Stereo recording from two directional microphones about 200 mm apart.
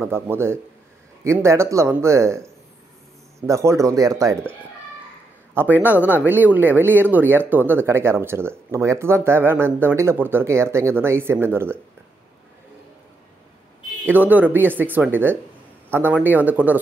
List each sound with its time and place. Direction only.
0.0 s speech: 10° right (ahead or behind)
14.0 s speech: 10° right (ahead or behind)